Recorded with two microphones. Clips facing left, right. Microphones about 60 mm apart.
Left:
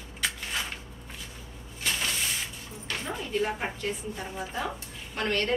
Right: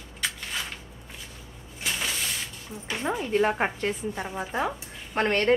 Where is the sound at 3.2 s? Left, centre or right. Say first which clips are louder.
Right 6 dB; right.